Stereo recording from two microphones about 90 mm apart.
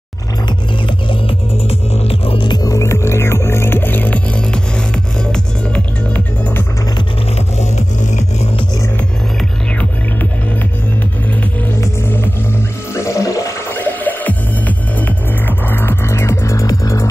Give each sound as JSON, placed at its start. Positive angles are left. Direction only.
{"t": 1.7, "sound": "music", "side_deg": 90}
{"t": 2.6, "sound": "music", "side_deg": 35}
{"t": 12.9, "sound": "music", "side_deg": 35}
{"t": 13.7, "sound": "music", "side_deg": 20}